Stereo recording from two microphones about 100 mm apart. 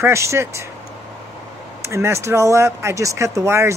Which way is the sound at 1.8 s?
30° right (ahead or behind).